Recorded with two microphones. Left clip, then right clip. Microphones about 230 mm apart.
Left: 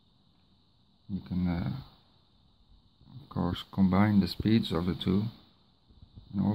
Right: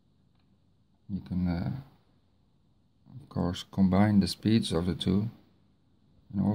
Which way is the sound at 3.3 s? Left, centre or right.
Centre.